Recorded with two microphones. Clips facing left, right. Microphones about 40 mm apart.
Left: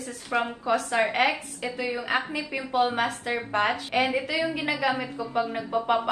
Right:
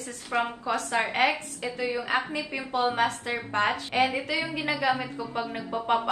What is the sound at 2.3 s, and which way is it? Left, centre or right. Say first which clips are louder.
Speech: left 3 dB; centre.